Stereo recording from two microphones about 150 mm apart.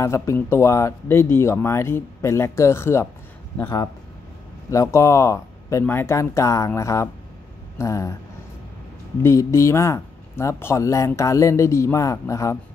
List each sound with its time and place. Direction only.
0.0 s speech: 20° left (ahead or behind)
4.6 s speech: 20° left (ahead or behind)
9.2 s speech: 20° left (ahead or behind)